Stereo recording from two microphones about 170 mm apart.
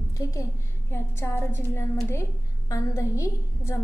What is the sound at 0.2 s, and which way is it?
A woman's voice, 20° left (ahead or behind).